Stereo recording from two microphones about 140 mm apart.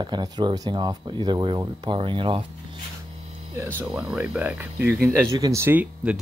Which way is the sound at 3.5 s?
15° right (ahead or behind).